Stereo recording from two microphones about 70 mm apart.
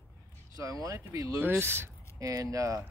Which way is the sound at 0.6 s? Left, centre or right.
Right.